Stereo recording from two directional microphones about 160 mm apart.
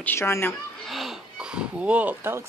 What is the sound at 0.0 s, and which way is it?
Speech, 15° left (ahead or behind).